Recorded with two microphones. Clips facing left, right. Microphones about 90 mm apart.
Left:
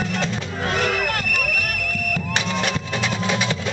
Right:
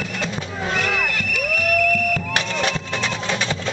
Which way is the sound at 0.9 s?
50° left (ahead or behind).